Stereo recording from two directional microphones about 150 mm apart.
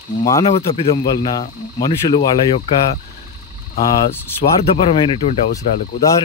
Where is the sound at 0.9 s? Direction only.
30° left (ahead or behind).